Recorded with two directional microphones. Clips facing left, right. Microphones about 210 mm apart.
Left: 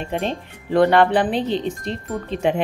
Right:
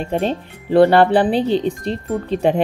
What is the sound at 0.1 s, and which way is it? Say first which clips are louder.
Speech: right 5 dB; 35° right (ahead or behind).